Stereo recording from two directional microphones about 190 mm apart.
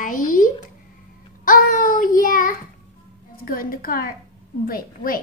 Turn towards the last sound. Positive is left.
turn(degrees=50)  # may be behind; listen again after turning